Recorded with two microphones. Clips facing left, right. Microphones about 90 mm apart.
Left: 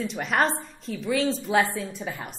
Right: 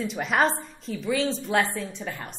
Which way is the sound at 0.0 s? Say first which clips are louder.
Right 1 dB; centre (ahead or behind).